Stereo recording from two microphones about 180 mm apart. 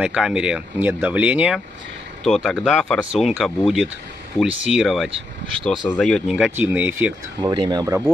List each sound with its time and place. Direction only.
0.0 s speech: 5° right (ahead or behind)
7.5 s speech: 25° right (ahead or behind)